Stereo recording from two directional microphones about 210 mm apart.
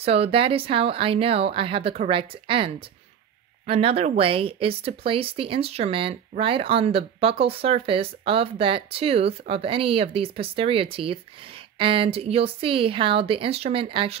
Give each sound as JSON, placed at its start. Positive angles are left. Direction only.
{"t": 0.0, "sound": "speech", "side_deg": -30}